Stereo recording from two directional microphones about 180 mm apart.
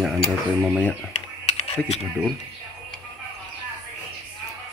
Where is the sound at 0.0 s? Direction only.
Centre (ahead or behind).